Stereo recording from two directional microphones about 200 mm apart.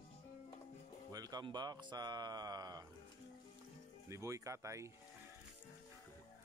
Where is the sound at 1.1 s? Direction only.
20° right (ahead or behind).